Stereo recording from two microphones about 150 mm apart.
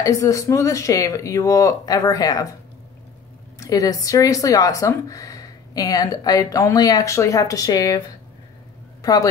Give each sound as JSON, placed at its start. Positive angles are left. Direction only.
{"t": 0.0, "sound": "speech", "side_deg": 20}
{"t": 3.5, "sound": "speech", "side_deg": 20}
{"t": 9.0, "sound": "speech", "side_deg": 25}